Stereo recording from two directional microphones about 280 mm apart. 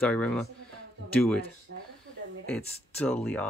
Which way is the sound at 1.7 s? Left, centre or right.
Right.